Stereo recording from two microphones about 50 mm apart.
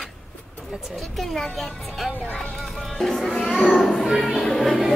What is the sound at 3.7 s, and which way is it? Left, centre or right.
Music, centre.